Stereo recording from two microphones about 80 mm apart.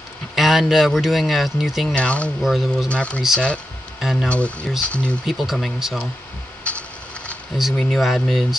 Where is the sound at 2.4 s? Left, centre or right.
Centre.